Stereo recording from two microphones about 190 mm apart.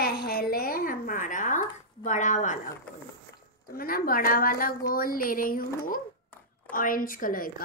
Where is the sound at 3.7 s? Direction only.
50° left (ahead or behind).